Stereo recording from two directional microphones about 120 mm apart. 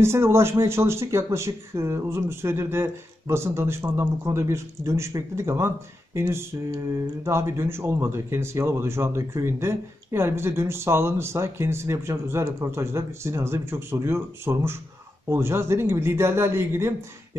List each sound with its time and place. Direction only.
0.0 s speech: 20° right (ahead or behind)